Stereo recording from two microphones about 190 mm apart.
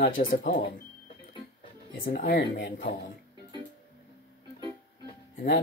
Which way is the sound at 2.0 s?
50° left (ahead or behind).